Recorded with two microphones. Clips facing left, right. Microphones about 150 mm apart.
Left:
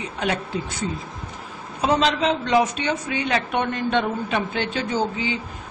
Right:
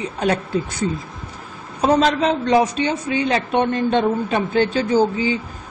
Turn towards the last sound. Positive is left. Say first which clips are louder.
# right 7 dB
turn(degrees=-35)  # may be behind; listen again after turning